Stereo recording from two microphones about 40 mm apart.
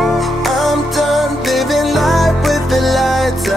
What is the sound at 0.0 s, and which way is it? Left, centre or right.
Music, centre.